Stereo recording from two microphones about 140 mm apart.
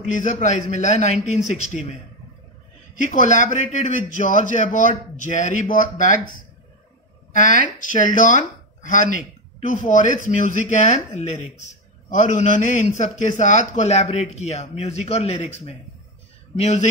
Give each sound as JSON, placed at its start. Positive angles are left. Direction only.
{"t": 0.0, "sound": "speech", "side_deg": 60}
{"t": 3.0, "sound": "speech", "side_deg": 60}